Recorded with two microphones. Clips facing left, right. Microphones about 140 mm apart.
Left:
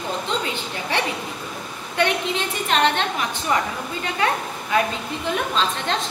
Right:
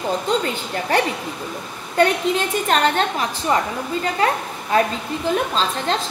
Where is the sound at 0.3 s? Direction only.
40° right (ahead or behind).